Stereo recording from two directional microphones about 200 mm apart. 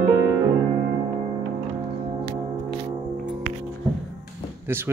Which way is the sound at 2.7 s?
20° right (ahead or behind).